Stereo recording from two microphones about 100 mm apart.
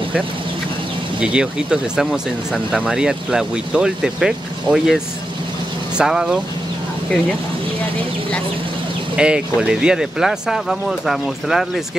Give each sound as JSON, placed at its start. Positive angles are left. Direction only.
{"t": 1.2, "sound": "speech", "side_deg": -10}
{"t": 9.1, "sound": "speech", "side_deg": -10}